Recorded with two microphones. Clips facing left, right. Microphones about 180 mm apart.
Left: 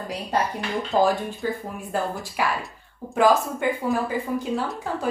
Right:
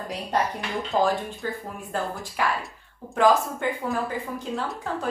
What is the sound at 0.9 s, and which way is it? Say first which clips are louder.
A woman's voice: left 3 dB; 5° left (ahead or behind).